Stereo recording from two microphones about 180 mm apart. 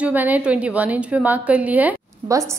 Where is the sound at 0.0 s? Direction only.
10° right (ahead or behind).